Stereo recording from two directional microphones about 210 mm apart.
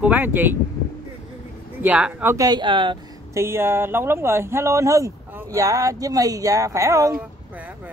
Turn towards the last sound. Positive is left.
turn(degrees=-15)  # may be behind; listen again after turning